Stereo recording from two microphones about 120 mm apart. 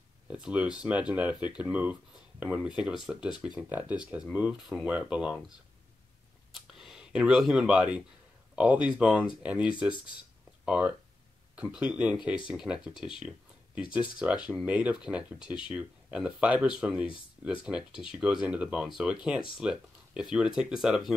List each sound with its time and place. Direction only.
0.3 s speech: 10° right (ahead or behind)
3.3 s speech: 40° left (ahead or behind)
3.5 s speech: 15° right (ahead or behind)
6.7 s speech: 5° right (ahead or behind)
10.6 s a sound: 10° right (ahead or behind)
11.5 s speech: 10° right (ahead or behind)
14.1 s speech: 10° right (ahead or behind)